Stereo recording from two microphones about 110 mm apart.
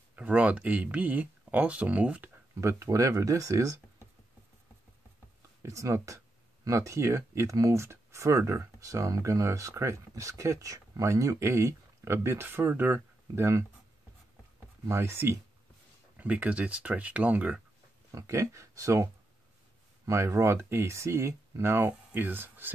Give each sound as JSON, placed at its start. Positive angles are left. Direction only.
{"t": 0.1, "sound": "speech", "side_deg": -10}
{"t": 2.5, "sound": "speech", "side_deg": -25}
{"t": 5.6, "sound": "speech", "side_deg": -30}
{"t": 14.9, "sound": "speech", "side_deg": -25}
{"t": 18.1, "sound": "speech", "side_deg": -30}
{"t": 20.1, "sound": "speech", "side_deg": -25}